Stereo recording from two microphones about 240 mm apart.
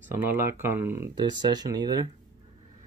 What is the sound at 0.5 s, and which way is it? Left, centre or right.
Speech, centre.